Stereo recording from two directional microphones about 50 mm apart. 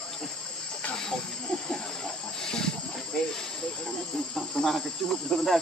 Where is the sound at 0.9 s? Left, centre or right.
Centre.